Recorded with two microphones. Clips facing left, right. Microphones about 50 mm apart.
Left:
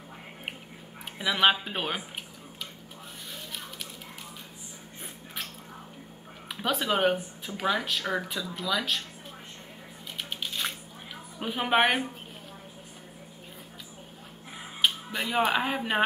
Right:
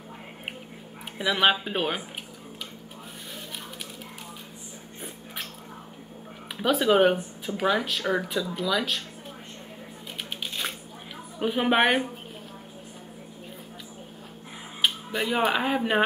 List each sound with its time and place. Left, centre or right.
1.1 s speech: centre
6.5 s speech: centre
10.4 s squish: centre
11.3 s speech: centre
14.8 s speech: centre